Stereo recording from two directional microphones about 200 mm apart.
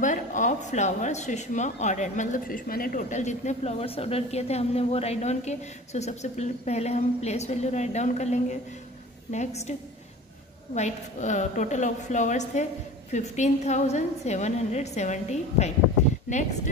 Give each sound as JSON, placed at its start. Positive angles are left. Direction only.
{"t": 0.0, "sound": "a woman's voice", "side_deg": 40}